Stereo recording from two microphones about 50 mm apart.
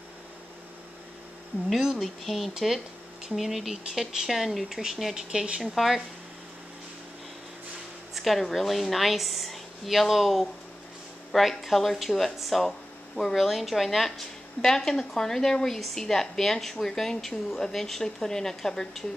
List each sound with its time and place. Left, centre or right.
1.7 s a woman's voice: centre
5.1 s speech: centre
5.6 s a woman's voice: centre
8.1 s a woman's voice: centre